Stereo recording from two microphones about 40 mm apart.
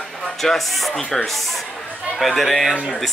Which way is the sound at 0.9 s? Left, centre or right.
Centre.